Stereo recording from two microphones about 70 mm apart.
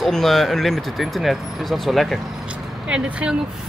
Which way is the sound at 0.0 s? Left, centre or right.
Centre.